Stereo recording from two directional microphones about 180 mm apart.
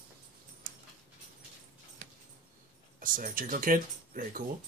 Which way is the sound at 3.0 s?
50° right (ahead or behind).